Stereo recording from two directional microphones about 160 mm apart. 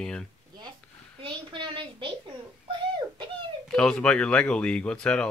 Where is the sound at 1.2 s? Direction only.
30° right (ahead or behind).